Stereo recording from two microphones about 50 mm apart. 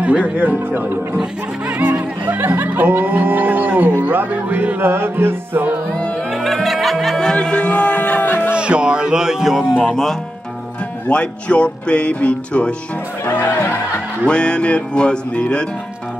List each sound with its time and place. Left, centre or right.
0.4 s speech: right
2.2 s music: right
3.9 s speech: right
4.7 s music: right
6.3 s music: centre
7.2 s music: centre; by 8.5 s left
8.5 s speech: right; by 9.8 s centre
11.1 s speech: left
13.2 s speech: left
14.2 s speech: left